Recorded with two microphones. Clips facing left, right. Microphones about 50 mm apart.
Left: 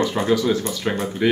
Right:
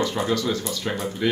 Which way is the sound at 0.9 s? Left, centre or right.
Left.